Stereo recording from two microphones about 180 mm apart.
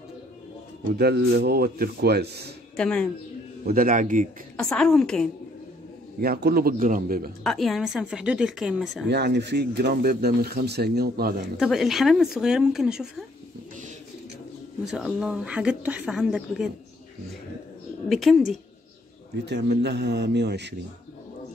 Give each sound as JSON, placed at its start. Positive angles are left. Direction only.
{"t": 0.9, "sound": "speech", "side_deg": -65}
{"t": 2.7, "sound": "speech", "side_deg": 5}
{"t": 3.6, "sound": "a man's voice", "side_deg": -50}
{"t": 4.6, "sound": "speech", "side_deg": 5}
{"t": 6.2, "sound": "speech", "side_deg": -55}
{"t": 7.4, "sound": "speech", "side_deg": 0}
{"t": 9.1, "sound": "speech", "side_deg": -70}
{"t": 11.6, "sound": "speech", "side_deg": 0}
{"t": 14.9, "sound": "speech", "side_deg": -5}
{"t": 18.0, "sound": "speech", "side_deg": 0}
{"t": 19.4, "sound": "a man's voice", "side_deg": -70}